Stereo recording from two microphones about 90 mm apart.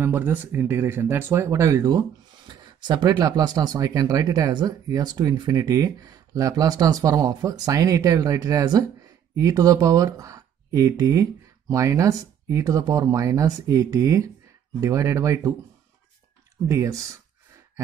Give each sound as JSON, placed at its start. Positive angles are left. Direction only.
{"t": 0.0, "sound": "speech", "side_deg": -25}
{"t": 16.6, "sound": "speech", "side_deg": -35}